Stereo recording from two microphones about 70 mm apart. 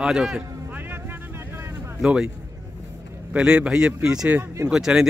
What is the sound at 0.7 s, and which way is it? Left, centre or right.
Vehicle, right.